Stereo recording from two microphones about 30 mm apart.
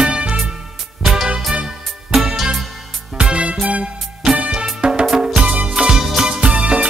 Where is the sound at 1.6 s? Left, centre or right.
Right.